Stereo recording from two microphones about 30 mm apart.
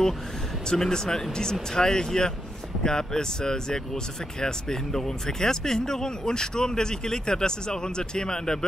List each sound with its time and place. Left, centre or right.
0.7 s speech: left